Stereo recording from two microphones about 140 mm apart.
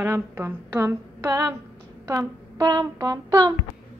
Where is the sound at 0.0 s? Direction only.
20° right (ahead or behind).